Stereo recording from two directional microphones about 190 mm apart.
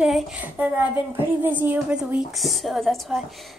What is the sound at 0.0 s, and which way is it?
A woman's voice, 5° right (ahead or behind).